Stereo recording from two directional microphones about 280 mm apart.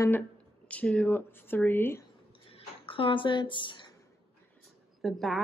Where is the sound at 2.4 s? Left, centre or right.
Centre.